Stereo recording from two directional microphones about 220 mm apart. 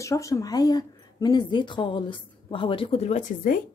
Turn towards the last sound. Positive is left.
turn(degrees=35)  # may be behind; listen again after turning